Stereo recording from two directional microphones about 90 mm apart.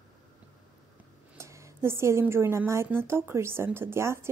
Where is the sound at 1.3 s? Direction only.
35° right (ahead or behind).